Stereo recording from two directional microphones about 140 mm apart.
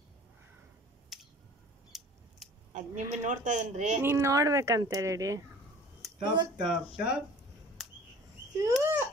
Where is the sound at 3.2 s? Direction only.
60° right (ahead or behind).